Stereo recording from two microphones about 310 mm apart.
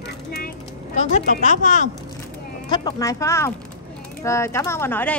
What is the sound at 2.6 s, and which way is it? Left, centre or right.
A woman's voice, centre.